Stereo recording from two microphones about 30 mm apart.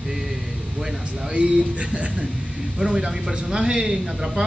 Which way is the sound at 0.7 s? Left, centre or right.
Centre.